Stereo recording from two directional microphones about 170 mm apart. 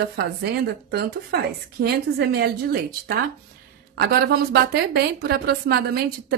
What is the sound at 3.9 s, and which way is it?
A woman's voice, 70° right (ahead or behind).